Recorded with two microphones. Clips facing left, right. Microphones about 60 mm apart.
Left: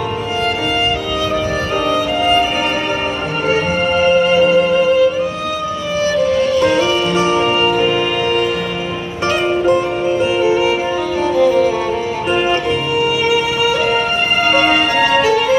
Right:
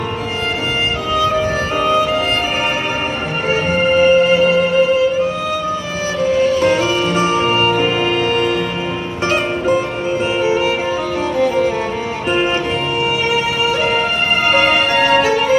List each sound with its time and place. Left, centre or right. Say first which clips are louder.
4.0 s music: even; right
6.6 s music: left 1 dB; right
11.3 s music: left 3 dB; right
15.0 s music: even; right